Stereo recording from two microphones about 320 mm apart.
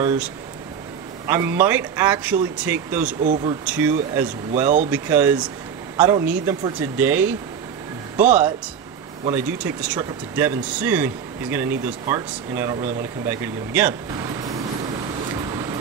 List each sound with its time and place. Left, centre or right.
1.2 s speech: centre
3.2 s speech: right
3.6 s a man's voice: centre